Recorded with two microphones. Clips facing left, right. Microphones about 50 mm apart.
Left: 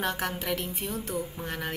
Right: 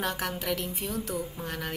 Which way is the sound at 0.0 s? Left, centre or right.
Centre.